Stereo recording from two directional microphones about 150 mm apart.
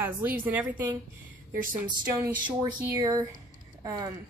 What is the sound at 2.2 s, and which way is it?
Speech, 30° right (ahead or behind).